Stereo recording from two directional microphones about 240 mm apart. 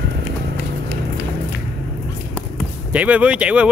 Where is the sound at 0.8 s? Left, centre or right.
Left.